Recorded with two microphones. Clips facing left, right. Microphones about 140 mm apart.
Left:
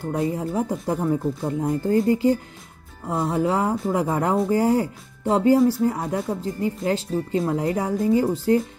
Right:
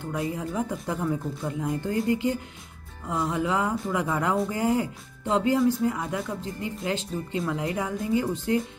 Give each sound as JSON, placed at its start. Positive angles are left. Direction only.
{"t": 0.0, "sound": "speech", "side_deg": 35}